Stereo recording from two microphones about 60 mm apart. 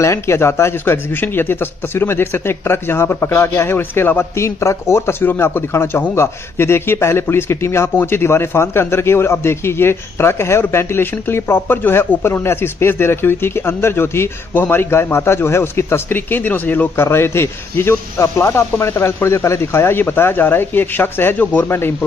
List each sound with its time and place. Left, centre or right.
0.0 s a man's voice: left